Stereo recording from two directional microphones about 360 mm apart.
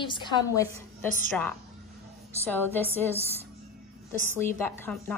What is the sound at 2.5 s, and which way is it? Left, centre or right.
Speech, centre.